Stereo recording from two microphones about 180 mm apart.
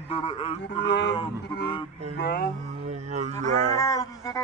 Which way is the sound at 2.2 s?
60° left (ahead or behind).